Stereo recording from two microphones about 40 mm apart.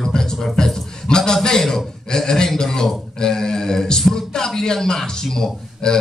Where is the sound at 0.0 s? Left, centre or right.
Centre.